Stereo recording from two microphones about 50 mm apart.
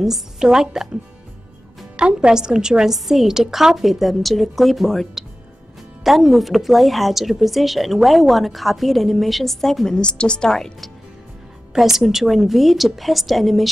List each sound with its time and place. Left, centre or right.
0.0 s a woman's voice: centre
2.0 s speech: centre
6.0 s speech: centre
9.9 s a woman's voice: centre
11.7 s speech: centre